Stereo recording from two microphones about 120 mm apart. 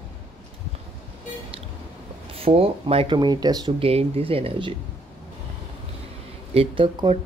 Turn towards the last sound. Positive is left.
turn(degrees=-45)  # may be behind; listen again after turning